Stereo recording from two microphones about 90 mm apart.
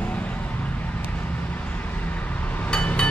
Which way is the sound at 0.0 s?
15° left (ahead or behind).